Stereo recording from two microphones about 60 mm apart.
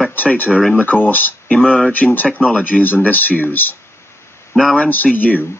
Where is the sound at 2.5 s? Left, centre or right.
Left.